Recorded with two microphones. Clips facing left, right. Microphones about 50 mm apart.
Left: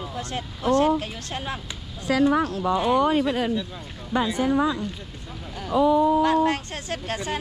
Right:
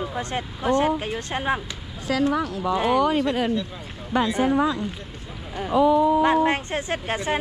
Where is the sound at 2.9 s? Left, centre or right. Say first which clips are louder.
Even; right.